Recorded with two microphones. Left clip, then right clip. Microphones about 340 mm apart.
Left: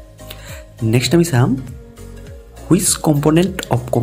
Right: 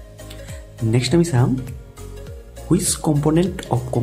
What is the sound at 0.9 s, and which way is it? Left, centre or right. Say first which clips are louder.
Speech: left 4 dB; centre.